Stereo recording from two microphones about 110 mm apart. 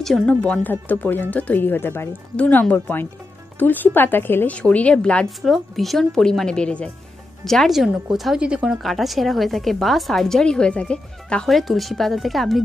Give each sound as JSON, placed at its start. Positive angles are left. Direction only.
{"t": 0.0, "sound": "a woman's voice", "side_deg": 5}